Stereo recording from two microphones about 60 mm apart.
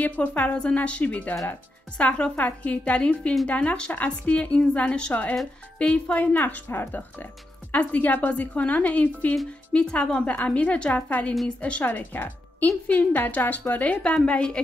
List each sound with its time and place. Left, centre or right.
0.2 s a woman's voice: left